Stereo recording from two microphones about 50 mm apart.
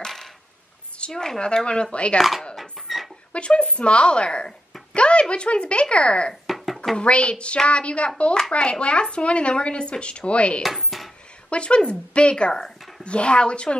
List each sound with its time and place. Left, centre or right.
0.0 s coin: centre
0.9 s a sound: left
1.4 s speech: centre
2.9 s a sound: centre
3.3 s speech: left
4.9 s a sound: left
5.3 s speech: left
6.4 s music: centre
7.0 s speech: left
10.6 s cutlery: centre
11.5 s speech: left